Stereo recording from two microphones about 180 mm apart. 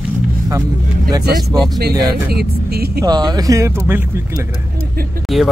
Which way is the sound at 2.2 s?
60° right (ahead or behind).